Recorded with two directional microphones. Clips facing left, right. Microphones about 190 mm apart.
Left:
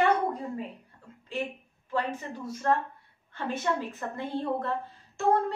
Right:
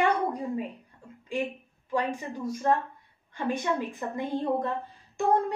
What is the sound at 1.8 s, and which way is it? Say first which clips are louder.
A woman's voice: right 2 dB; 15° right (ahead or behind).